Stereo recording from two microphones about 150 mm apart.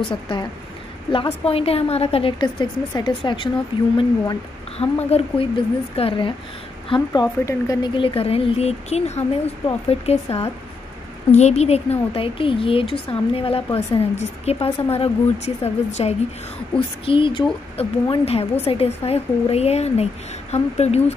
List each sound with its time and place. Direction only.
0.1 s speech: 30° left (ahead or behind)
7.1 s speech: 20° left (ahead or behind); by 21.0 s 45° left (ahead or behind)